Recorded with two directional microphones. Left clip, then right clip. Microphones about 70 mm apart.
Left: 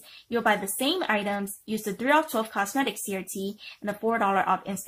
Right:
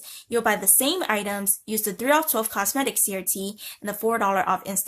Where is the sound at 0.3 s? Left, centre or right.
Right.